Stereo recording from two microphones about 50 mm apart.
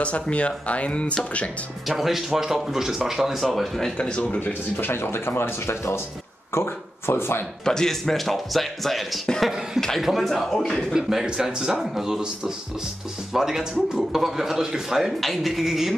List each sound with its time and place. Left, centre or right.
0.0 s speech: left
1.9 s speech: centre
3.4 s speech: centre
4.0 s speech: centre
4.3 s speech: left
7.6 s speech: centre
10.3 s speech: centre
10.8 s speech: centre